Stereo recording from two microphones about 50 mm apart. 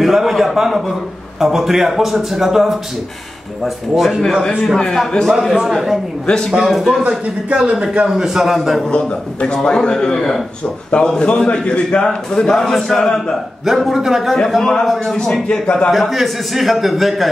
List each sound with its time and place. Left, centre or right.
0.0 s a man's voice: centre
4.4 s a man's voice: centre
5.5 s a man's voice: centre
6.2 s a man's voice: centre
6.5 s speech: centre
7.0 s speech: right
8.2 s a man's voice: centre
8.5 s speech: centre
8.8 s a man's voice: left
13.8 s speech: centre
14.6 s a man's voice: centre
15.4 s a man's voice: centre
15.9 s speech: centre